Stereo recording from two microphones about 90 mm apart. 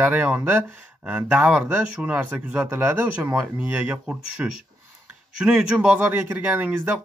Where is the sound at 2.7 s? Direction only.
25° right (ahead or behind).